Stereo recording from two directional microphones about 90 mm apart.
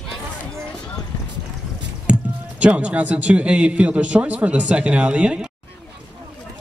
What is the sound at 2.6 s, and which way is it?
A man's voice, 15° right (ahead or behind).